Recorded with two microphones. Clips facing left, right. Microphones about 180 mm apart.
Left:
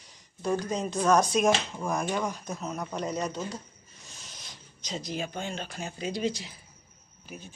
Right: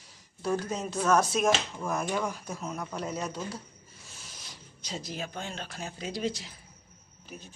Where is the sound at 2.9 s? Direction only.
5° right (ahead or behind).